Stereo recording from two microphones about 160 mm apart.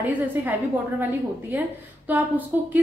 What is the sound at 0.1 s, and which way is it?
Speech, 10° right (ahead or behind).